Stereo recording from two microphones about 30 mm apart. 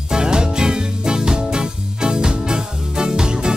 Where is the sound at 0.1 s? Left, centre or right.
Right.